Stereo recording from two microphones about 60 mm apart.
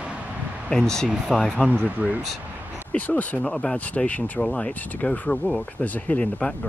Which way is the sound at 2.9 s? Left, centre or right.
Left.